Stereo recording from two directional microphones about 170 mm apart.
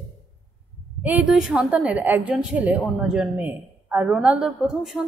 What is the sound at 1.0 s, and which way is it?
A woman's voice, 5° right (ahead or behind).